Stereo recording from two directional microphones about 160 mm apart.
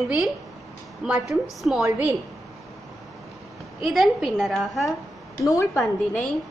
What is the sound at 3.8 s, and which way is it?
A woman's voice, centre (ahead or behind).